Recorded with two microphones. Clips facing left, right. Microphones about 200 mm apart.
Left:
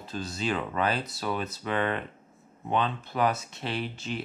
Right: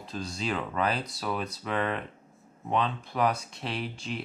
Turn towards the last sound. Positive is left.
turn(degrees=0)  # may be behind; listen again after turning